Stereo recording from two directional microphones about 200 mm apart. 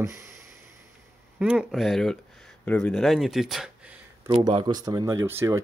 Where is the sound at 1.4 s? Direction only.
5° right (ahead or behind).